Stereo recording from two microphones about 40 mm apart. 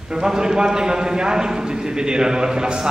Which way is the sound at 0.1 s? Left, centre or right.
Centre.